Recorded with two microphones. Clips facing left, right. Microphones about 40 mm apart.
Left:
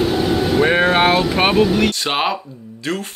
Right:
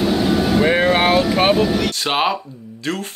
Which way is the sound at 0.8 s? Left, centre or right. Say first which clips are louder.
Even; left.